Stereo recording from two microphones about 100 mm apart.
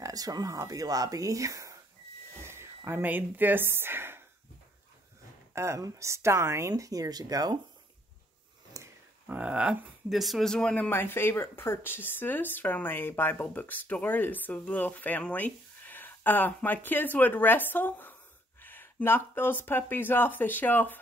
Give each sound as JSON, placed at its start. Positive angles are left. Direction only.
{"t": 0.0, "sound": "speech", "side_deg": -40}
{"t": 5.5, "sound": "speech", "side_deg": -30}
{"t": 8.8, "sound": "a sound", "side_deg": -30}
{"t": 9.3, "sound": "speech", "side_deg": -15}
{"t": 10.9, "sound": "speech", "side_deg": 20}